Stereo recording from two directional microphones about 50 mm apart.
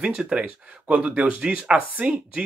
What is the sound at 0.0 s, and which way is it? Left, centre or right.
Speech, right.